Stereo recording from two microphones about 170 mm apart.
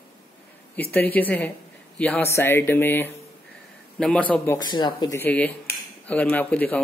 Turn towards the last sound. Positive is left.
turn(degrees=10)  # may be behind; listen again after turning